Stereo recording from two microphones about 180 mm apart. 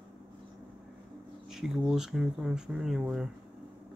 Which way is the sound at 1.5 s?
Centre (ahead or behind).